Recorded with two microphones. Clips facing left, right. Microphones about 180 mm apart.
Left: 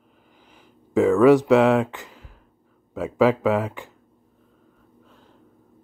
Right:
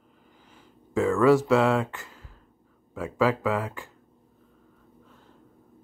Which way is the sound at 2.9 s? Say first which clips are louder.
Left 5 dB; 20° left (ahead or behind).